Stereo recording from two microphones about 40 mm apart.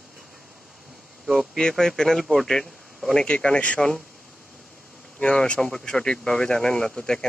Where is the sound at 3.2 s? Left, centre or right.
Left.